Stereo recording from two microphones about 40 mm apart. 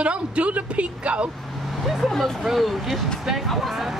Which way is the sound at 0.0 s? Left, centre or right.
Right.